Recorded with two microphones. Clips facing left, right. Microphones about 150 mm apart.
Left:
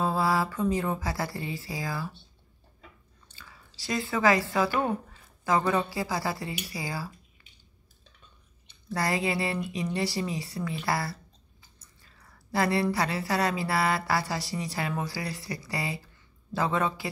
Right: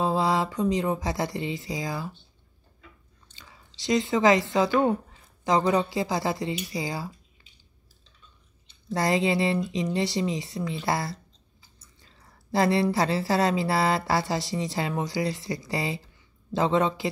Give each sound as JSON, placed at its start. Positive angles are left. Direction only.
{"t": 0.0, "sound": "speech", "side_deg": -20}
{"t": 3.3, "sound": "speech", "side_deg": -20}
{"t": 8.8, "sound": "speech", "side_deg": -25}
{"t": 12.0, "sound": "a sound", "side_deg": -25}
{"t": 12.9, "sound": "speech", "side_deg": -25}